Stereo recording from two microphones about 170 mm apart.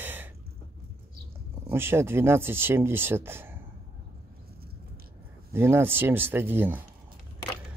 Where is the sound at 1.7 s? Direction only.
15° right (ahead or behind).